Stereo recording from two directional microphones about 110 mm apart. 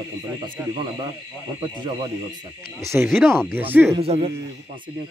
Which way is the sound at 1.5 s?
45° right (ahead or behind).